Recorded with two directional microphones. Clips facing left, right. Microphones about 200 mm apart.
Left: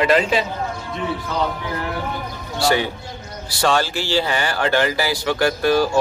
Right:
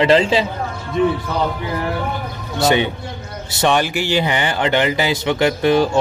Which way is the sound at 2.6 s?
20° right (ahead or behind).